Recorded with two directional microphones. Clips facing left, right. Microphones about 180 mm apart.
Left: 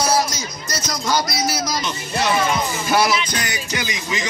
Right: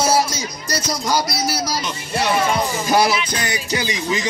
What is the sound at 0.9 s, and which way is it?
Speech, 10° right (ahead or behind).